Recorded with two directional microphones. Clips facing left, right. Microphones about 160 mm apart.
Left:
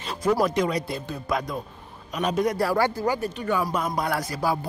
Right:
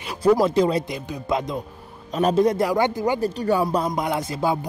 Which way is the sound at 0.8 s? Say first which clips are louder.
Right 2 dB; 15° right (ahead or behind).